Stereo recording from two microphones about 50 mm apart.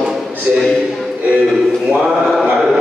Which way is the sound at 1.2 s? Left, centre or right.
Right.